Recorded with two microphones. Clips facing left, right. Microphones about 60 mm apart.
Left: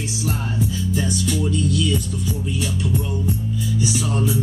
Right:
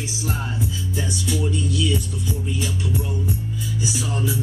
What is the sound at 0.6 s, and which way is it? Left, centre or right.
Music, left.